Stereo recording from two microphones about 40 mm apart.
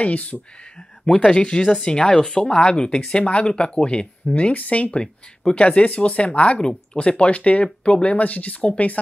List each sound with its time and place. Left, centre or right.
0.0 s speech: left
4.9 s speech: left